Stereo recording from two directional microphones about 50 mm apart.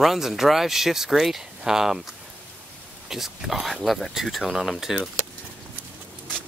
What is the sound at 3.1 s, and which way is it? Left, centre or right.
Speech, centre.